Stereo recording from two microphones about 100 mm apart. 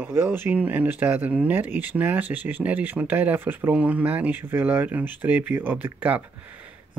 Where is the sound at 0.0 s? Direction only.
20° right (ahead or behind).